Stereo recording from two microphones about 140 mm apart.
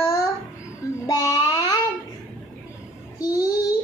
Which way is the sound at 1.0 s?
25° left (ahead or behind).